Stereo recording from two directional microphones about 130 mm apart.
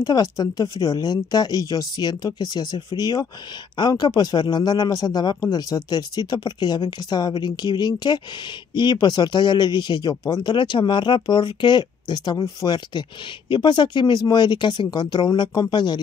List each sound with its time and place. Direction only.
0.0 s a man's voice: 30° left (ahead or behind)